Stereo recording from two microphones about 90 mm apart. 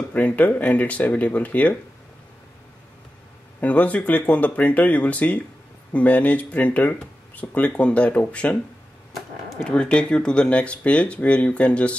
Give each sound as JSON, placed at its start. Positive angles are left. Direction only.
{"t": 0.1, "sound": "speech", "side_deg": 15}
{"t": 3.6, "sound": "speech", "side_deg": 15}
{"t": 9.7, "sound": "speech", "side_deg": 10}